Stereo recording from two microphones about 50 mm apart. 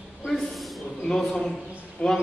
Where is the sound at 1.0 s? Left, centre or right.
Centre.